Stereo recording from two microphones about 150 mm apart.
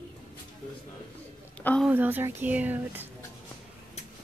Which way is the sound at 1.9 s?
15° right (ahead or behind).